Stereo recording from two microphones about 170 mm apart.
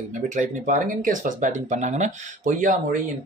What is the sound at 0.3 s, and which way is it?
Speech, 50° right (ahead or behind).